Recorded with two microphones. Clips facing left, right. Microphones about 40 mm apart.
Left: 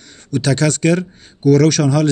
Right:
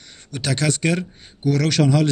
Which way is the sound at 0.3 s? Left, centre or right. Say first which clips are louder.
Left 6 dB; centre.